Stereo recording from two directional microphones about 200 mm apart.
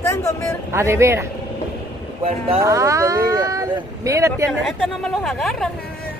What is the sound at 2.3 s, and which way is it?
Speech, 25° right (ahead or behind).